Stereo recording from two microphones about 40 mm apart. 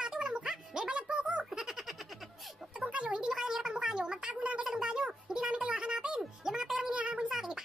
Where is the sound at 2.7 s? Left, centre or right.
Right.